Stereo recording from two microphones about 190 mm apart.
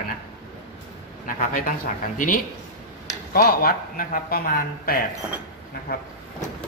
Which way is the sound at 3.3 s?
50° left (ahead or behind).